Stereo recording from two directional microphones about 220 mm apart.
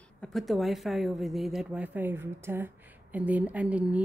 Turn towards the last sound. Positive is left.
turn(degrees=-5)  # may be behind; listen again after turning